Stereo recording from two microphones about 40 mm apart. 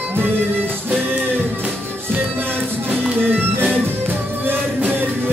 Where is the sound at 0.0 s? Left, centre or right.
Right.